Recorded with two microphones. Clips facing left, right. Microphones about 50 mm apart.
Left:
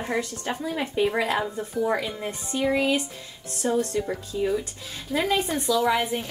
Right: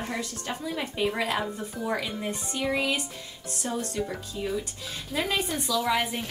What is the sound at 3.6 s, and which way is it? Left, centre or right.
Speech, left.